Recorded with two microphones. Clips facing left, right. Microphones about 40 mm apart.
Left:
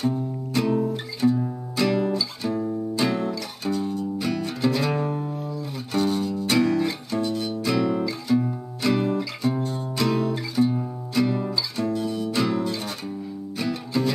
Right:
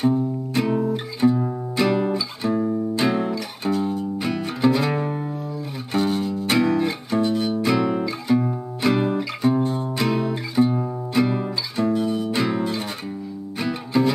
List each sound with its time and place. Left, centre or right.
0.6 s music: centre